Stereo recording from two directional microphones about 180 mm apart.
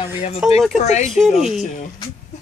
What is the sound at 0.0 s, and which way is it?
Speech, 35° left (ahead or behind).